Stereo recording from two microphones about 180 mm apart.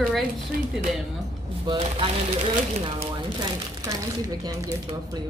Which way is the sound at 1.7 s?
30° right (ahead or behind).